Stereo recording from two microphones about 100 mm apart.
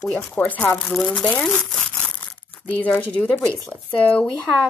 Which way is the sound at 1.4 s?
15° left (ahead or behind).